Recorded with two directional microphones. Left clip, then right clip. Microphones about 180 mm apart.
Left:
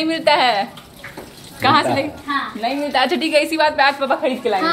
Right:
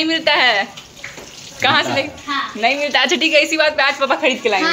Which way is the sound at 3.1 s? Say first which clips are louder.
Right 3 dB; 10° left (ahead or behind).